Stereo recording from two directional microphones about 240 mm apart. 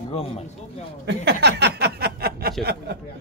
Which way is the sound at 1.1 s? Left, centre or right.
Right.